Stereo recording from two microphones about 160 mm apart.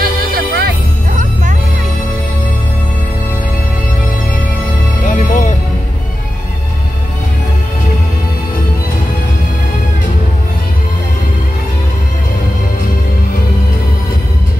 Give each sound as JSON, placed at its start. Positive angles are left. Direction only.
{"t": 0.0, "sound": "music", "side_deg": -70}
{"t": 1.1, "sound": "music", "side_deg": -50}
{"t": 5.0, "sound": "music", "side_deg": 50}